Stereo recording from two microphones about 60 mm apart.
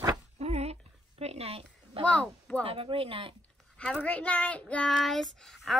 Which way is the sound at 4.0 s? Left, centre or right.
Left.